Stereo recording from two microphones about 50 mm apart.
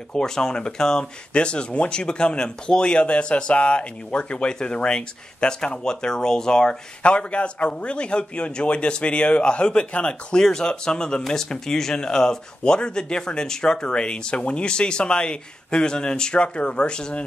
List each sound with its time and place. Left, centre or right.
0.1 s speech: centre